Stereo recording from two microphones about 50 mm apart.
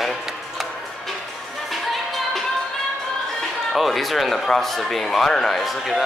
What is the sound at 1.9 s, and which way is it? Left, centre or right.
Music, centre.